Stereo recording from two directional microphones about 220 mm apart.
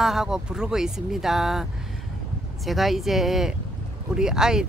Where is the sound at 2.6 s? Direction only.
Centre (ahead or behind).